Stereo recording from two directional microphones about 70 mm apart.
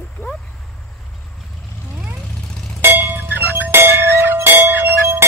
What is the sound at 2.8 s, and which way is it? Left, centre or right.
Music, right.